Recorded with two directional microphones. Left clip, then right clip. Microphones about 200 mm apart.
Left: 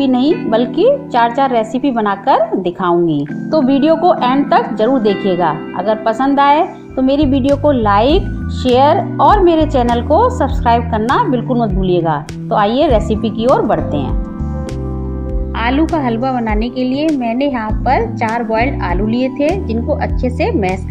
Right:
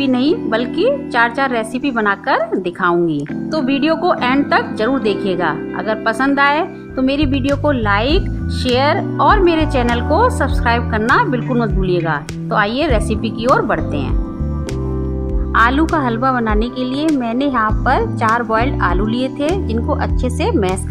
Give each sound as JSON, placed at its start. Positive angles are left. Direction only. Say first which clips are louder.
{"t": 0.0, "sound": "a woman's voice", "louder": "left 2 dB", "side_deg": 0}
{"t": 11.4, "sound": "a woman's voice", "louder": "left 2 dB", "side_deg": -15}
{"t": 11.8, "sound": "a woman's voice", "louder": "left 3 dB", "side_deg": -5}
{"t": 15.8, "sound": "a woman's voice", "louder": "even", "side_deg": 0}